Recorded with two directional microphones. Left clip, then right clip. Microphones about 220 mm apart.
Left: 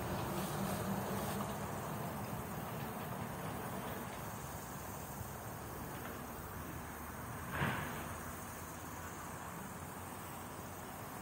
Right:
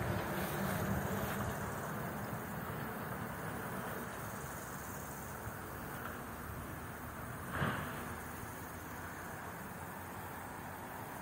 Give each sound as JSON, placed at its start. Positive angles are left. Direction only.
{"t": 0.1, "sound": "vehicle", "side_deg": -45}
{"t": 7.5, "sound": "vehicle", "side_deg": -50}